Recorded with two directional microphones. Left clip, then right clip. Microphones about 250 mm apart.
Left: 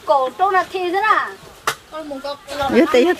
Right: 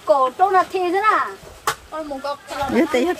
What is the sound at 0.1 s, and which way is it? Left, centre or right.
Speech, right.